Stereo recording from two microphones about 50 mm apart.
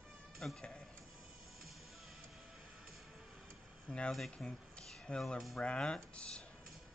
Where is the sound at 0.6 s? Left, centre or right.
Centre.